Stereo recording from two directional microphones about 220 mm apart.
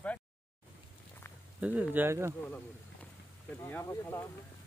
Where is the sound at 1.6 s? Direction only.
5° right (ahead or behind).